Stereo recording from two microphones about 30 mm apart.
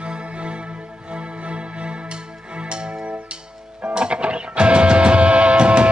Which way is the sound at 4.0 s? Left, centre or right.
Right.